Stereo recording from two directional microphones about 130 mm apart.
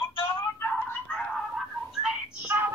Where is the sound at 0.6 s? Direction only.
20° left (ahead or behind).